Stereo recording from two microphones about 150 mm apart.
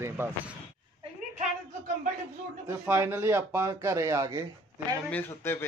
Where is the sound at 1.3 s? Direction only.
55° right (ahead or behind).